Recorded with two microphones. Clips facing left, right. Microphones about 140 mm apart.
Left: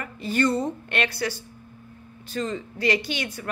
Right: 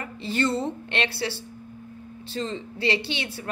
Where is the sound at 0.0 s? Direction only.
25° right (ahead or behind).